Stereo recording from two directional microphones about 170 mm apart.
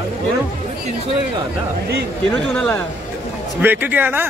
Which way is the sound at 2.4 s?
5° left (ahead or behind).